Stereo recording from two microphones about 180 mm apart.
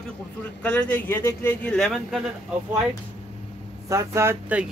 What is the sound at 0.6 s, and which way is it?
A man's voice, 10° left (ahead or behind).